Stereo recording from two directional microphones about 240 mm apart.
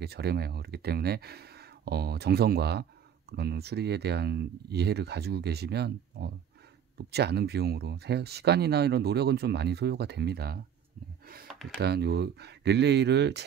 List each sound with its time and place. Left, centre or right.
0.0 s speech: right
11.8 s speech: right